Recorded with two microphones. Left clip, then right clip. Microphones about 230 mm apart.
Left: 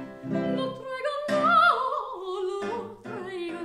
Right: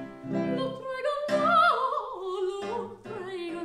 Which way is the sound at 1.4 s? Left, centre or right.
Centre.